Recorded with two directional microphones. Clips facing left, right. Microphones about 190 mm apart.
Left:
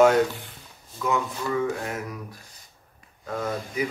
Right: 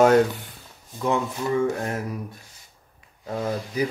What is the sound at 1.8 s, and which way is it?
Speech, 30° right (ahead or behind).